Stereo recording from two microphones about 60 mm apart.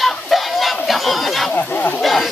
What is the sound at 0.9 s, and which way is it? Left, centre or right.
Crowd, centre.